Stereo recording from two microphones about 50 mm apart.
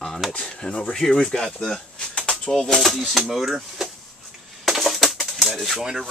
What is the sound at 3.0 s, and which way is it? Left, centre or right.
Speech, centre.